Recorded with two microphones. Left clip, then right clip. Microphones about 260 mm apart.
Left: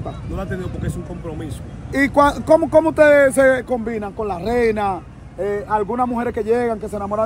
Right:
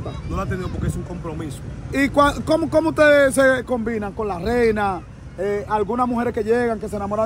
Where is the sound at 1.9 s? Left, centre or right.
Centre.